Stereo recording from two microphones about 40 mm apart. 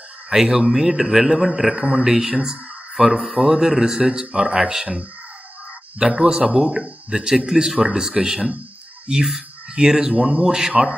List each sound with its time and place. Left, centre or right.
0.3 s a man's voice: centre
3.0 s a man's voice: centre
10.1 s a man's voice: right